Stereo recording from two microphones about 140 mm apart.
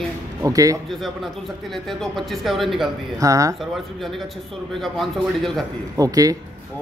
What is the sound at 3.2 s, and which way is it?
Speech, 25° right (ahead or behind).